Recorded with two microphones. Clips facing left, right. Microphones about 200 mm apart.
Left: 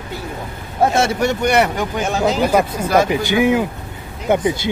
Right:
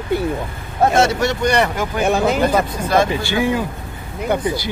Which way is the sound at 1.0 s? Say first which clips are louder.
Right 1 dB; 10° left (ahead or behind).